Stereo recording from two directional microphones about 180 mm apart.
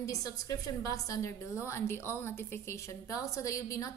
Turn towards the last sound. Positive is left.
turn(degrees=15)  # may be behind; listen again after turning